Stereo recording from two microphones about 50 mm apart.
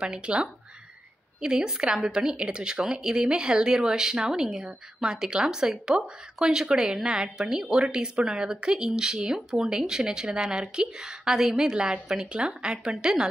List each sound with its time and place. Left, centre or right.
0.0 s speech: centre
1.4 s a woman's voice: centre
12.7 s a woman's voice: centre
13.0 s a woman's voice: centre